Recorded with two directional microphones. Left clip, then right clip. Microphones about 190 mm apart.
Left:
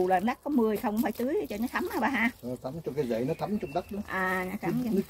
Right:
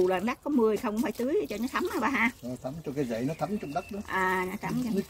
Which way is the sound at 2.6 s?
25° left (ahead or behind).